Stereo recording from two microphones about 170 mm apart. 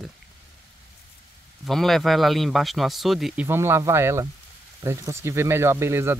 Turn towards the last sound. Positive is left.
turn(degrees=-15)  # may be behind; listen again after turning